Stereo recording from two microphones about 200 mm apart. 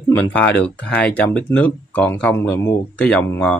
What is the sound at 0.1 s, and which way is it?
Speech, 5° left (ahead or behind).